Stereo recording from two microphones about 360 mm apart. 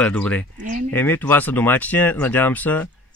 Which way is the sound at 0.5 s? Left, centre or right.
Right.